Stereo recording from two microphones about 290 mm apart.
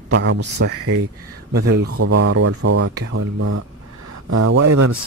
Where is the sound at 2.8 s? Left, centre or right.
Right.